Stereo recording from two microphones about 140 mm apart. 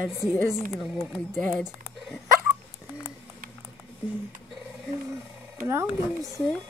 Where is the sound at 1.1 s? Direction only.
10° left (ahead or behind).